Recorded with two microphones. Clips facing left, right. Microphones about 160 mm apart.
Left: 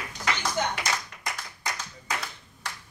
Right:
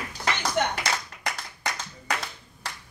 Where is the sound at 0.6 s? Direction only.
70° right (ahead or behind).